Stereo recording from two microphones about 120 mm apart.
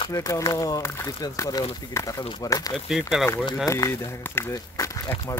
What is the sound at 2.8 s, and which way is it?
Speech, 5° right (ahead or behind).